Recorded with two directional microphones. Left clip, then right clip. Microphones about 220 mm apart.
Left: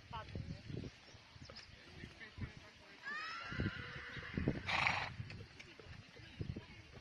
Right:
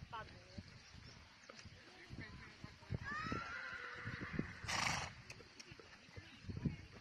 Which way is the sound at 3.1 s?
40° left (ahead or behind).